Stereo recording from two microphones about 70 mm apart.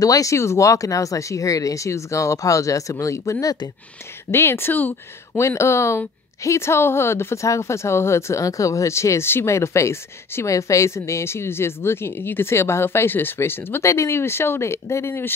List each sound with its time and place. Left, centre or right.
0.0 s speech: left
4.3 s a woman's voice: left
5.4 s a woman's voice: left
13.8 s a woman's voice: left